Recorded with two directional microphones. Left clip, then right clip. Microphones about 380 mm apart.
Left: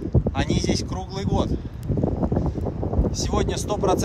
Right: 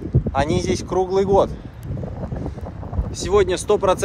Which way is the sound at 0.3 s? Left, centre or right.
Centre.